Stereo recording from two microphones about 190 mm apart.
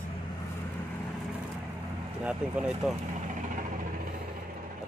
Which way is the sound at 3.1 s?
40° right (ahead or behind).